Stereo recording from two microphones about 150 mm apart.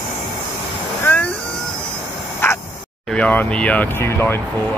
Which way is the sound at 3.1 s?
10° left (ahead or behind).